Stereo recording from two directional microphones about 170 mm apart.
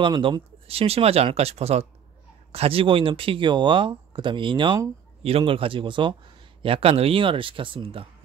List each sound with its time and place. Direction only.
0.0 s speech: 30° right (ahead or behind)